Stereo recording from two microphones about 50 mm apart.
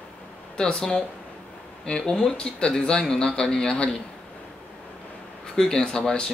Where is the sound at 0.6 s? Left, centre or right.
Centre.